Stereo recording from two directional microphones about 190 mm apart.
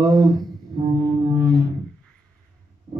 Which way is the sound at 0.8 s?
20° right (ahead or behind).